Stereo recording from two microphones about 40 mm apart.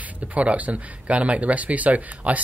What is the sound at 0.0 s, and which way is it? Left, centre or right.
Speech, right.